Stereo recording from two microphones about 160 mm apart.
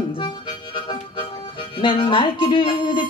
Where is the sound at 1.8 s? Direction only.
35° left (ahead or behind).